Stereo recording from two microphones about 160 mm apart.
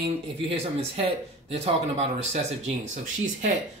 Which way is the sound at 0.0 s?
40° right (ahead or behind).